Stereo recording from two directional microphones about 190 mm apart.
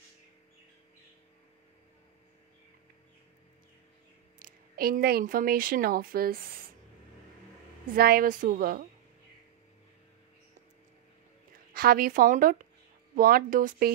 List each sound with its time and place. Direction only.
4.4 s a woman's voice: 50° right (ahead or behind)
7.9 s a woman's voice: 50° right (ahead or behind)
11.7 s a woman's voice: 50° right (ahead or behind)